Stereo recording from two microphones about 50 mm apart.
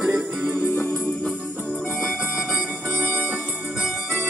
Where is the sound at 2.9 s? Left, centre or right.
Right.